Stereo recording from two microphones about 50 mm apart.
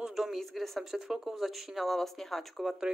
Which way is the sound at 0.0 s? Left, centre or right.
Centre.